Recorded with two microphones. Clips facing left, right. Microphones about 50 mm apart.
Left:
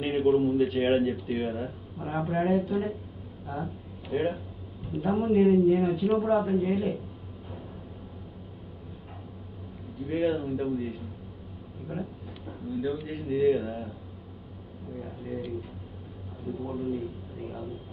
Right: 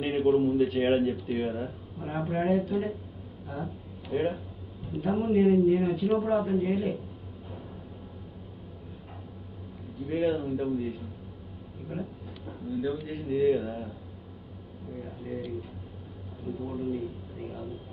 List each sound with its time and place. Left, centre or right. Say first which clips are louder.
0.0 s a man's voice: even; centre
10.1 s a man's voice: even; centre
11.9 s speech: left 1 dB; centre
13.7 s speech: left 1 dB; left
15.0 s a man's voice: left 1 dB; centre
16.5 s a man's voice: left 1 dB; centre